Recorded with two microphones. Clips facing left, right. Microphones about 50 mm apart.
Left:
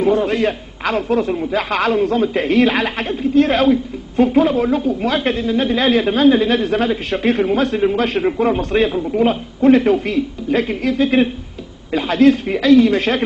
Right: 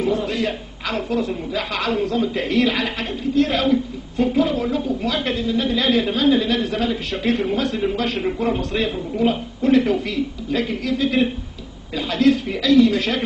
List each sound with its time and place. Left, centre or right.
0.0 s a woman's voice: left